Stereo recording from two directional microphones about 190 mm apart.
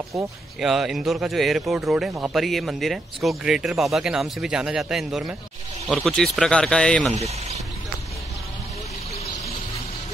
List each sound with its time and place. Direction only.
0.6 s speech: centre (ahead or behind)
7.2 s speech: 35° right (ahead or behind)